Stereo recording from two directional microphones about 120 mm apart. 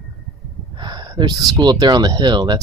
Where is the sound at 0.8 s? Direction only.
35° right (ahead or behind).